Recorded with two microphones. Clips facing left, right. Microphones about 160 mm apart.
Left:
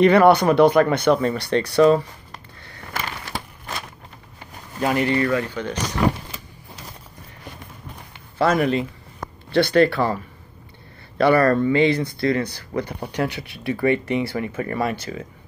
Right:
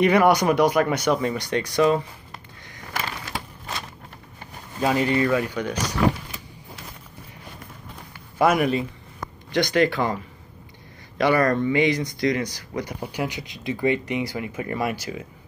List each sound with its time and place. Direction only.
0.0 s speech: 10° right (ahead or behind)
4.8 s speech: 20° right (ahead or behind)
8.4 s speech: 10° right (ahead or behind)